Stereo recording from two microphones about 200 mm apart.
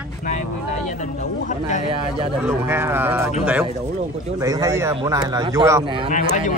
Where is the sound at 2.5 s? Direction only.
10° right (ahead or behind).